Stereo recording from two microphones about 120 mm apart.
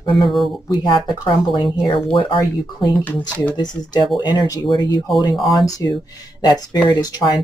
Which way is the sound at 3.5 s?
35° left (ahead or behind).